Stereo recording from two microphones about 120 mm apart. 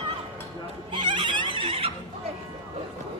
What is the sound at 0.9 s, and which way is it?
Neigh, 40° right (ahead or behind).